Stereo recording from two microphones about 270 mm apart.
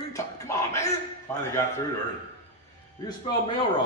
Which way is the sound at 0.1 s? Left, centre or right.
Centre.